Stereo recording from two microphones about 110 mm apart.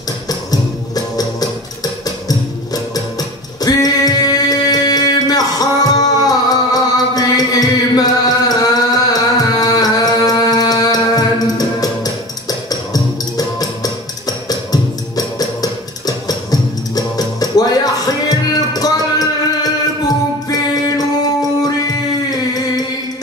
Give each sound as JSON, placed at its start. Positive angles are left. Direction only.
{"t": 0.3, "sound": "music", "side_deg": 35}